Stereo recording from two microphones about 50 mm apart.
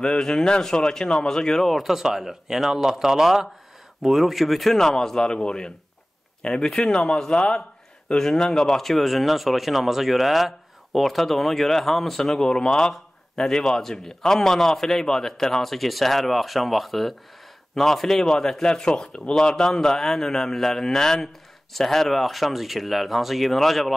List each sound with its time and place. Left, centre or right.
0.0 s speech: centre
1.8 s speech: centre